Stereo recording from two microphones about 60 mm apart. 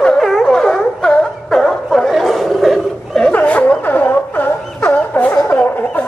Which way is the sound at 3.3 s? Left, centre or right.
Left.